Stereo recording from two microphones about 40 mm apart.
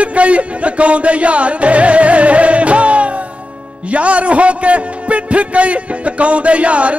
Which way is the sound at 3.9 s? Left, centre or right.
Right.